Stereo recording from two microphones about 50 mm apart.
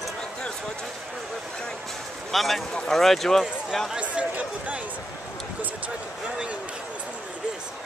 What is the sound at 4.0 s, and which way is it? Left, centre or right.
Speech, right.